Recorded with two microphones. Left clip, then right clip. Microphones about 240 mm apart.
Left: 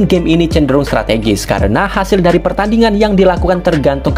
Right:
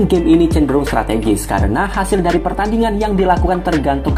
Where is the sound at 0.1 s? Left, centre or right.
Left.